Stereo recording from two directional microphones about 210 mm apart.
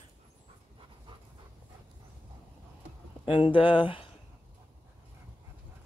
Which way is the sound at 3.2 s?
25° left (ahead or behind).